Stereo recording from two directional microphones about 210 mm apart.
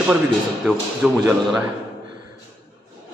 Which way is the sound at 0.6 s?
5° right (ahead or behind).